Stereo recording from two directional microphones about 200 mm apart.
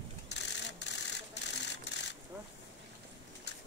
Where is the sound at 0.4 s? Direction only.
60° left (ahead or behind).